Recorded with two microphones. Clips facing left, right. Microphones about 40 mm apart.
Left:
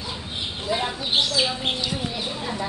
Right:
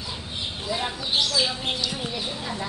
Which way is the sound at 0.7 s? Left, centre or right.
Left.